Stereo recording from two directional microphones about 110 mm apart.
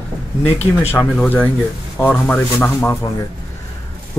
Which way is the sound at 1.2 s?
15° left (ahead or behind).